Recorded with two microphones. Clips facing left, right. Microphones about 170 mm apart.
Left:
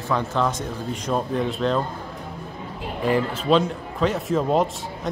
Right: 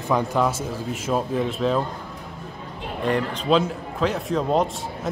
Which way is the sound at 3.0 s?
5° left (ahead or behind).